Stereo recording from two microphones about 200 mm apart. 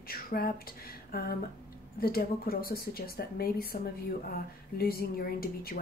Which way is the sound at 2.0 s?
50° left (ahead or behind).